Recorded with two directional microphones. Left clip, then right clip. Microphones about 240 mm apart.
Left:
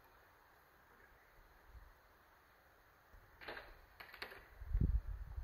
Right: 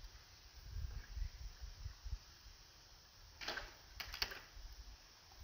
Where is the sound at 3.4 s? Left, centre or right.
Right.